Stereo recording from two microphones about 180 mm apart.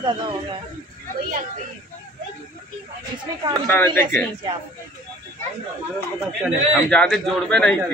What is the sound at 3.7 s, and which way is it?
Speech, 10° left (ahead or behind).